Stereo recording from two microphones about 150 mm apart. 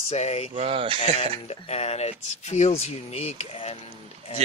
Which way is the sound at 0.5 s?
40° right (ahead or behind).